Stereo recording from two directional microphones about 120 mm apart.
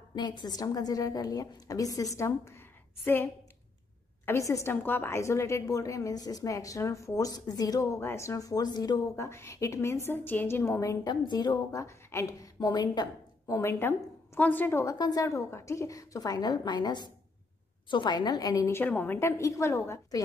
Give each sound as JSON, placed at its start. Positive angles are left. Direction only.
{"t": 0.1, "sound": "a woman's voice", "side_deg": 40}
{"t": 4.3, "sound": "a woman's voice", "side_deg": 25}
{"t": 9.1, "sound": "a woman's voice", "side_deg": 20}
{"t": 11.1, "sound": "a woman's voice", "side_deg": 35}
{"t": 11.8, "sound": "a woman's voice", "side_deg": 25}
{"t": 15.0, "sound": "a woman's voice", "side_deg": 30}
{"t": 18.8, "sound": "a woman's voice", "side_deg": 15}